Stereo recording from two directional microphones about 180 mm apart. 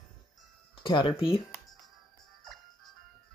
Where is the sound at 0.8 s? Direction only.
25° left (ahead or behind).